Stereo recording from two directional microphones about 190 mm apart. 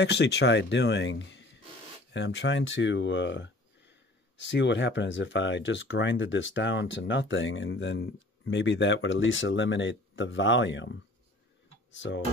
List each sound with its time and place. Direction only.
0.0 s speech: 60° left (ahead or behind)